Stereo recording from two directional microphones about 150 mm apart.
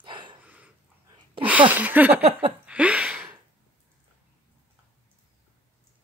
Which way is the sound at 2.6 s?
10° right (ahead or behind).